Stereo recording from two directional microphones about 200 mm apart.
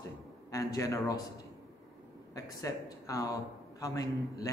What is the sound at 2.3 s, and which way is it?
A man's voice, 15° left (ahead or behind).